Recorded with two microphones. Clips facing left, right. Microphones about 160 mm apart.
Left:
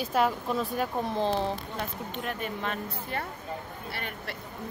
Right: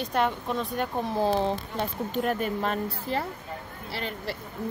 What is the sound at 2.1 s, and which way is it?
Speech, 40° right (ahead or behind).